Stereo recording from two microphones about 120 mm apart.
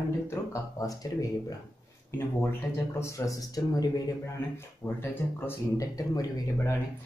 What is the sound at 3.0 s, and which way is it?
Speech, 25° left (ahead or behind).